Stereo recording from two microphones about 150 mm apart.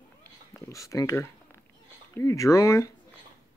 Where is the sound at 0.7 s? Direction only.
20° left (ahead or behind).